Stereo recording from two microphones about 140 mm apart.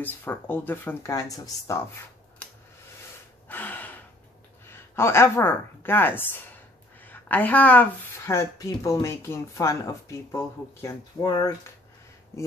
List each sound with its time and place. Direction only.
0.0 s speech: 15° left (ahead or behind)
3.4 s gasp: 15° left (ahead or behind)
4.6 s speech: 15° left (ahead or behind)